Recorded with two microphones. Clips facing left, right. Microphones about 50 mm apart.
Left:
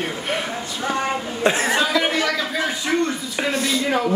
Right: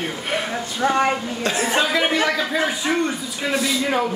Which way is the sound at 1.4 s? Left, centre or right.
Left.